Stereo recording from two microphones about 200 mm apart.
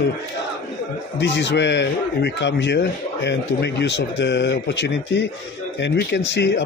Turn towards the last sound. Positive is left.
turn(degrees=60)  # may be behind; listen again after turning